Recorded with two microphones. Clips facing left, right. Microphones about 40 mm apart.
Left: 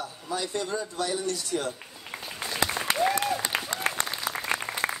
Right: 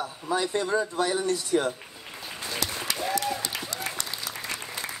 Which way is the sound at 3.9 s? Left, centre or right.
Left.